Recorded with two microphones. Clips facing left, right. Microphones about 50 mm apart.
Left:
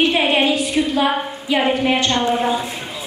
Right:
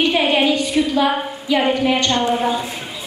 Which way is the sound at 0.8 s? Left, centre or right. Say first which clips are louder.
Right 1 dB; centre.